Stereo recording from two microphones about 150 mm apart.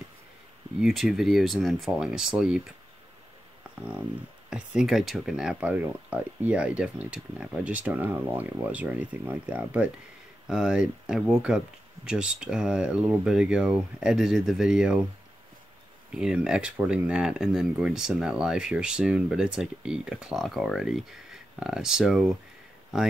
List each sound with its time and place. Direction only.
0.7 s speech: centre (ahead or behind)
4.5 s speech: 5° right (ahead or behind)
16.1 s speech: 5° right (ahead or behind)